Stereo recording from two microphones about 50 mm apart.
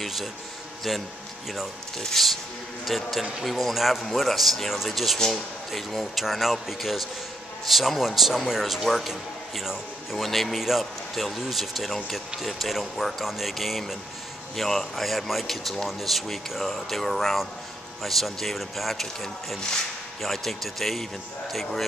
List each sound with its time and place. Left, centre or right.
0.0 s a sound: centre
0.9 s a man's voice: centre
20.2 s a man's voice: centre